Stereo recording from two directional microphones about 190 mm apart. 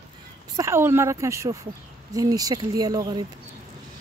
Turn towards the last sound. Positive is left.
turn(degrees=-20)  # may be behind; listen again after turning